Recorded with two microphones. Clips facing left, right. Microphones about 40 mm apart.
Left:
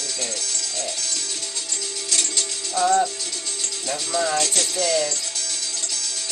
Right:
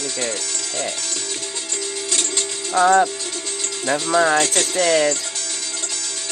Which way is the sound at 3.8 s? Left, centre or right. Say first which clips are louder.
Right 7 dB; right.